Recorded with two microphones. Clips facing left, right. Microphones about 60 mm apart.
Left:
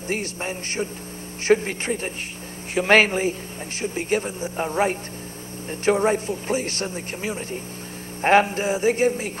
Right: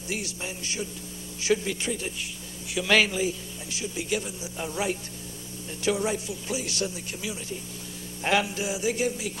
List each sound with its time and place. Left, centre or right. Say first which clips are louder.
0.1 s a man's voice: left 6 dB; left